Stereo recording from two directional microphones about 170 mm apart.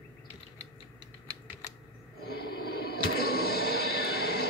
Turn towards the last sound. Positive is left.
turn(degrees=70)  # may be behind; listen again after turning